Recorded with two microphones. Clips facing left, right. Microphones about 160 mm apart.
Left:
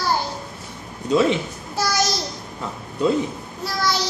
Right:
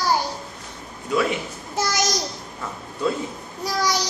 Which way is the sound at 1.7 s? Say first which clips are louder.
Left 1 dB; 20° right (ahead or behind).